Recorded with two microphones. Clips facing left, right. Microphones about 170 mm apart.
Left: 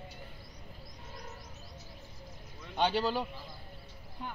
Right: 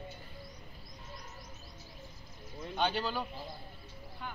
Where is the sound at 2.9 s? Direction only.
30° left (ahead or behind).